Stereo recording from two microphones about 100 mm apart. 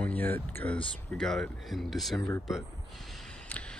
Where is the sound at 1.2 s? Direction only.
5° left (ahead or behind).